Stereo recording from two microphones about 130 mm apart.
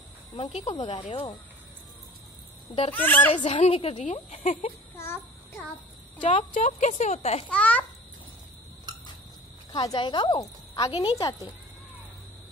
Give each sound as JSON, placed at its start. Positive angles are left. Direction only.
{"t": 0.6, "sound": "speech", "side_deg": 50}
{"t": 2.9, "sound": "a child's voice", "side_deg": 15}
{"t": 3.4, "sound": "speech", "side_deg": 60}
{"t": 4.9, "sound": "child singing", "side_deg": 20}
{"t": 6.2, "sound": "speech", "side_deg": 70}
{"t": 7.4, "sound": "a child's voice", "side_deg": 10}
{"t": 9.8, "sound": "speech", "side_deg": 30}
{"t": 10.0, "sound": "speech", "side_deg": 40}
{"t": 11.1, "sound": "speech", "side_deg": 30}